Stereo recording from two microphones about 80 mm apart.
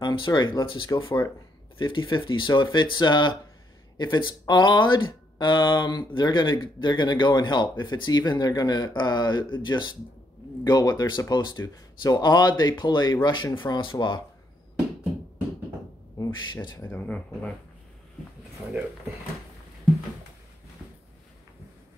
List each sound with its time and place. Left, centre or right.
0.0 s speech: left
10.6 s speech: left
13.6 s speech: left
16.2 s a sound: left
16.9 s speech: left